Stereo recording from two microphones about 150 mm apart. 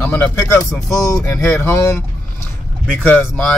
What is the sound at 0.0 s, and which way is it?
Speech, 10° left (ahead or behind).